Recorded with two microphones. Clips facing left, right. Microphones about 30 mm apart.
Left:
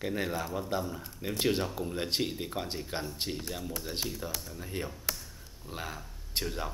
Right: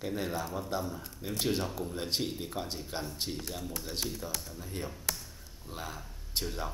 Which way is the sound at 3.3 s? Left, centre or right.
Centre.